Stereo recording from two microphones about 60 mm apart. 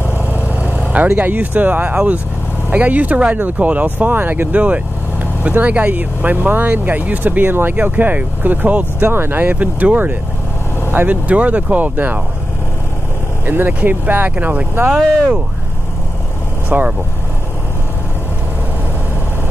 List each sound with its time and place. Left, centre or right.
0.3 s vehicle: right
2.7 s speech: right
13.5 s speech: right
16.6 s speech: right